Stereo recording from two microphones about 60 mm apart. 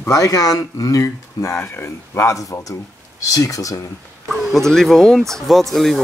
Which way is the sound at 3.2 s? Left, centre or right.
Left.